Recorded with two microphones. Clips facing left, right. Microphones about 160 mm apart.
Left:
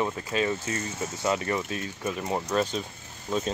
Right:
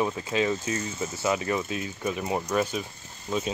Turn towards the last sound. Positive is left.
turn(degrees=-5)  # may be behind; listen again after turning